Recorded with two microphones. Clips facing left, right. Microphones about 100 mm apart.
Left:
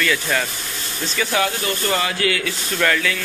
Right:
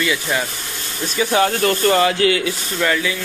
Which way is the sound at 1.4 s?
45° right (ahead or behind).